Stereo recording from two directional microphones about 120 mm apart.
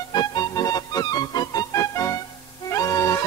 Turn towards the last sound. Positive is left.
turn(degrees=25)  # may be behind; listen again after turning